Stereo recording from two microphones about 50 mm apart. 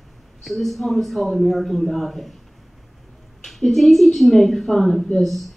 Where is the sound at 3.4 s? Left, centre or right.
Centre.